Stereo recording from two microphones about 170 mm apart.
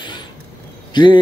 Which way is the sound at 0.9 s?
25° left (ahead or behind).